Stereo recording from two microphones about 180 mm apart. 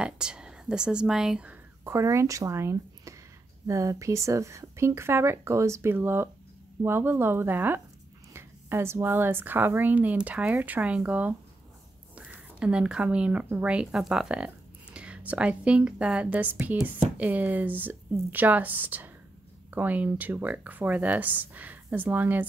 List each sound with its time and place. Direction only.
0.0 s a woman's voice: 5° right (ahead or behind)